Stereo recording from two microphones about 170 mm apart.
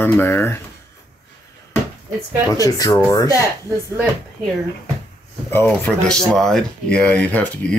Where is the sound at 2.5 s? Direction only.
20° left (ahead or behind).